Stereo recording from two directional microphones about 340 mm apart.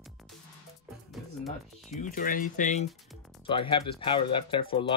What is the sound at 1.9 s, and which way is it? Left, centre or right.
Speech, left.